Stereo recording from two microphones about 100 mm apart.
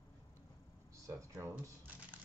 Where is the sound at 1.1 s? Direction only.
30° right (ahead or behind).